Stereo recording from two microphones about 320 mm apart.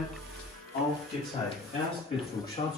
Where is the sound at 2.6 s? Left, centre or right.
Centre.